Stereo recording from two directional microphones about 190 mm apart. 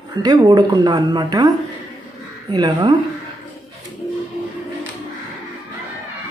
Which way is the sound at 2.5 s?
25° right (ahead or behind).